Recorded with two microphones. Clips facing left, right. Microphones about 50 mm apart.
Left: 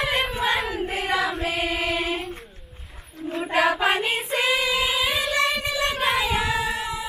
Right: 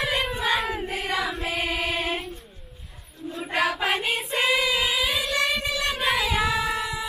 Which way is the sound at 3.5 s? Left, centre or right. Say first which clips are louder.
Left 3 dB; centre.